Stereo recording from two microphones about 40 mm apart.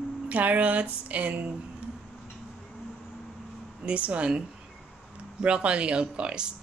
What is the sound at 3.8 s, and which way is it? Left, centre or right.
Speech, right.